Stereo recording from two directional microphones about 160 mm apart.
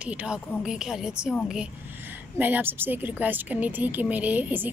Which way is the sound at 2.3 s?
10° right (ahead or behind).